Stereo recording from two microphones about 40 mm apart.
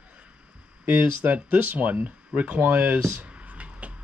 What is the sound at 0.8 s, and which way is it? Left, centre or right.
Speech, right.